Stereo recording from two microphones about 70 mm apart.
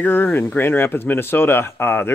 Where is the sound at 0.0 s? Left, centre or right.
Left.